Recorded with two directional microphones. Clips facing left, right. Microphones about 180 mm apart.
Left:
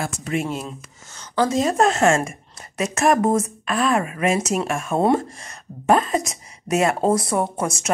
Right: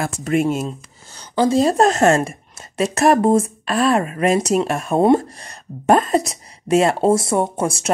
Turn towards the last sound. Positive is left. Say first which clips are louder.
# right 3 dB
turn(degrees=-30)  # may be behind; listen again after turning